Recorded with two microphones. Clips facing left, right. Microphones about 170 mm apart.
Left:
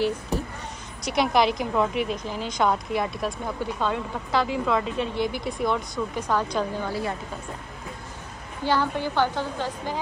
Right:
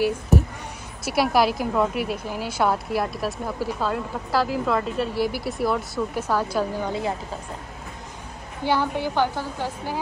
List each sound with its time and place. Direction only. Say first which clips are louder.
1.0 s a woman's voice: right 1 dB; 5° right (ahead or behind)
6.9 s speech: right 2 dB; 20° right (ahead or behind)
8.6 s a woman's voice: right 1 dB; 10° right (ahead or behind)